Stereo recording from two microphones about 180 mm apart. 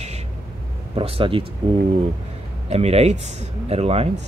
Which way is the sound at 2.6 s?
35° right (ahead or behind).